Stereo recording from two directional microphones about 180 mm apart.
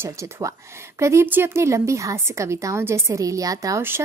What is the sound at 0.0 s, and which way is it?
Speech, 15° right (ahead or behind).